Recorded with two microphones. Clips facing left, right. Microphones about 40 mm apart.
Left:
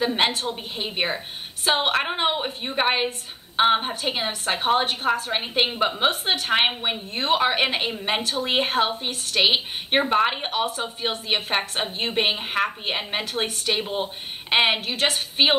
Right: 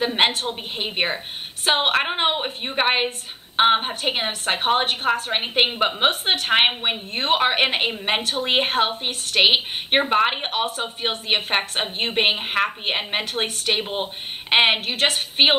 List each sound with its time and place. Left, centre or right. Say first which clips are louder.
0.0 s a woman's voice: right 2 dB; right